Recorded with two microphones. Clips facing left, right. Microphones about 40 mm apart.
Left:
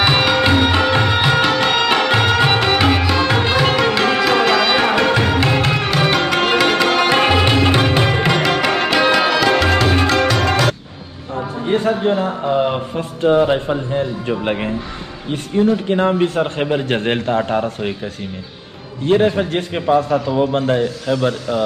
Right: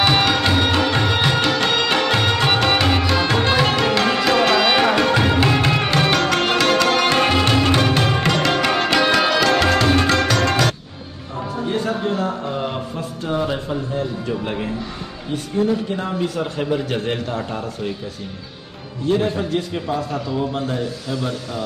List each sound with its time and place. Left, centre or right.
0.0 s music: centre
11.6 s a man's voice: left
15.9 s a man's voice: left
19.0 s a man's voice: left